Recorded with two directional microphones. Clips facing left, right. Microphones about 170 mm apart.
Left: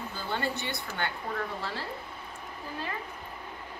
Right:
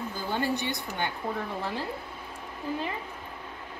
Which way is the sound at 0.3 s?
15° right (ahead or behind).